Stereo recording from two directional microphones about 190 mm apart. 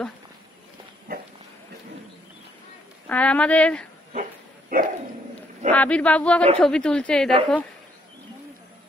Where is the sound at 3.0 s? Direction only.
5° left (ahead or behind).